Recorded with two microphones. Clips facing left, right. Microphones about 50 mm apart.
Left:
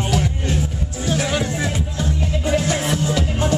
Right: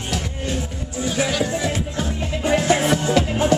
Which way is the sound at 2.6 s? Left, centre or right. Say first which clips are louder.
Right 3 dB; right.